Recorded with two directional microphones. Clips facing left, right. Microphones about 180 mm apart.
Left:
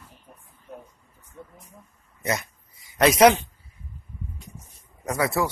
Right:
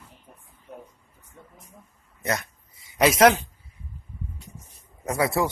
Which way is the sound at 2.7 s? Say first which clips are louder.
Even; 25° right (ahead or behind).